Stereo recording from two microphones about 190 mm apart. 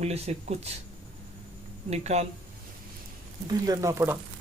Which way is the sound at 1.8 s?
35° right (ahead or behind).